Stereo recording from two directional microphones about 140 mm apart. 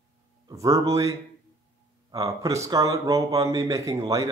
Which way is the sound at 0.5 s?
25° right (ahead or behind).